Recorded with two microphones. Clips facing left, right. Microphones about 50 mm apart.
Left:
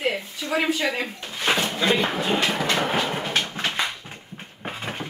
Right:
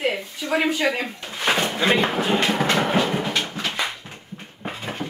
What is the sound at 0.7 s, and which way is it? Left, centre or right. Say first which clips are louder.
Speech: right 3 dB; right.